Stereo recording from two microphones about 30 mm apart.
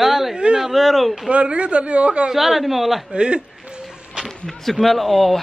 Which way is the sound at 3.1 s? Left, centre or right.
Right.